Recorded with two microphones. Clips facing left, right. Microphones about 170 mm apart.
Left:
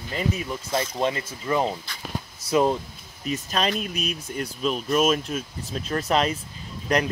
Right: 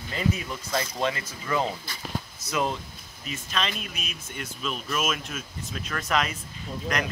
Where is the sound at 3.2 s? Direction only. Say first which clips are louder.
Left 6 dB; 40° left (ahead or behind).